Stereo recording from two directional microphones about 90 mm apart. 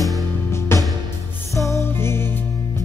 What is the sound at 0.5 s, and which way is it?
Music, 30° left (ahead or behind).